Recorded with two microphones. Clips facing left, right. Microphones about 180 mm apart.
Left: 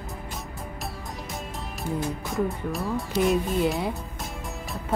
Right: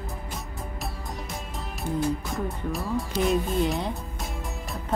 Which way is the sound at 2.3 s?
Centre (ahead or behind).